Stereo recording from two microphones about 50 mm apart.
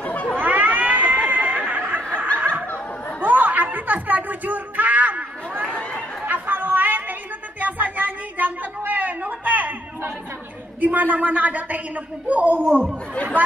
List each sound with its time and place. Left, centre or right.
0.0 s a sound: left
0.4 s cat: right
2.0 s snicker: right
3.2 s music: right
6.2 s chatter: right
7.6 s a sound: right
10.8 s a woman's voice: right
12.5 s speech: right
13.1 s speech: left